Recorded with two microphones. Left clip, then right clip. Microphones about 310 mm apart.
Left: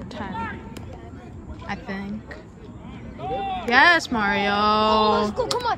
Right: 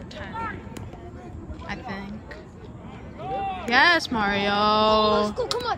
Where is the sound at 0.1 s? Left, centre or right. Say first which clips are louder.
Left 2 dB; centre.